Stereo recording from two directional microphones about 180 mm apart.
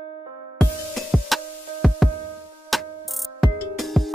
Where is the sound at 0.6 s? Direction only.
Centre (ahead or behind).